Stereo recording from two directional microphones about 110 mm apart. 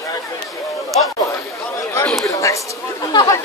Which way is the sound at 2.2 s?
30° left (ahead or behind).